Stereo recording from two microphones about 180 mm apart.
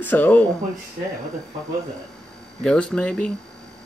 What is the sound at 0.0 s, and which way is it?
Speech, 10° left (ahead or behind).